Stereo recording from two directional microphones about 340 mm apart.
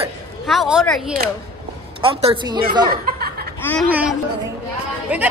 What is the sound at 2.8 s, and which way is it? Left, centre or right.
Chuckle, right.